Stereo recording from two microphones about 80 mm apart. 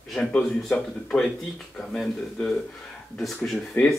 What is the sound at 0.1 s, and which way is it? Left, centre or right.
Speech, centre.